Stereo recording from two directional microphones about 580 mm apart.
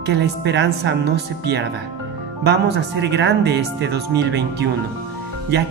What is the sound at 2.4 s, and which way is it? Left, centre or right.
Speech, centre.